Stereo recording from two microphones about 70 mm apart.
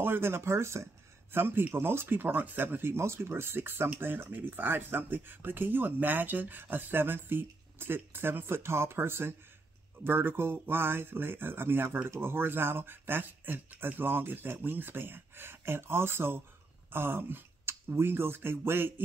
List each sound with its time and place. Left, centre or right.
0.0 s speech: right